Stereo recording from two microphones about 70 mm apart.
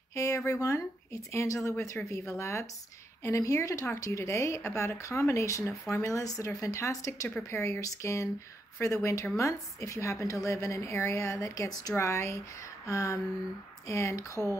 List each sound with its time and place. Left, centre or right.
0.1 s a sound: left
0.5 s speech: left
7.5 s speech: left
7.8 s speech: left
12.0 s speech: left